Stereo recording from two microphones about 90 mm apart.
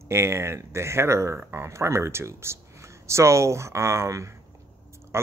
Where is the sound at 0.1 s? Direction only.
30° right (ahead or behind).